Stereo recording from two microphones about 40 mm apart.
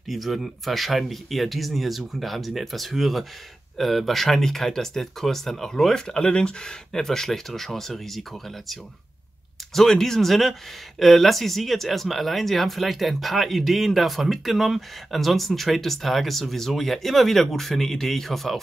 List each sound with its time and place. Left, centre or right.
0.1 s speech: centre
6.0 s speech: left
7.0 s speech: centre
9.8 s speech: centre